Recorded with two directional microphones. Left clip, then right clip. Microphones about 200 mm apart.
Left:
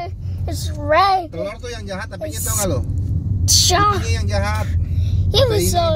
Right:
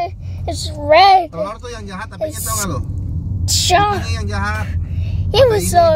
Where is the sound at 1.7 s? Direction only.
50° right (ahead or behind).